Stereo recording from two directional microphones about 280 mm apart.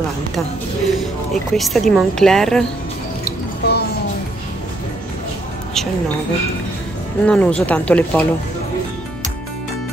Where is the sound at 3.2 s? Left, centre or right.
Left.